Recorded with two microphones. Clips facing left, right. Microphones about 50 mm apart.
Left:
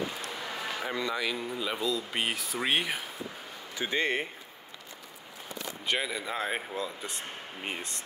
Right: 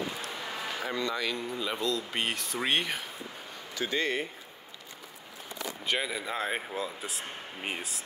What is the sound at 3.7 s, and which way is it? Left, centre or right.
Speech, left.